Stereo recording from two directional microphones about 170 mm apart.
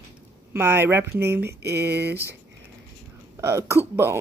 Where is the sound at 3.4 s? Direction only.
15° right (ahead or behind).